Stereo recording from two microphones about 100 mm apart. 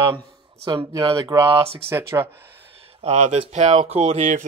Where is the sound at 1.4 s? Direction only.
70° right (ahead or behind).